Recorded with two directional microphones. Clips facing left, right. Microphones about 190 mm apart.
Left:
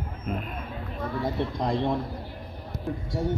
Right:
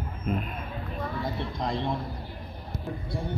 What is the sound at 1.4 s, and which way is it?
Speech, 55° left (ahead or behind).